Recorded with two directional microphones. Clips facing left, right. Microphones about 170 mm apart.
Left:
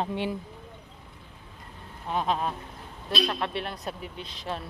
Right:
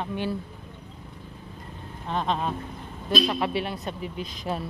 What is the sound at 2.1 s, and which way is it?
A woman's voice, 5° left (ahead or behind).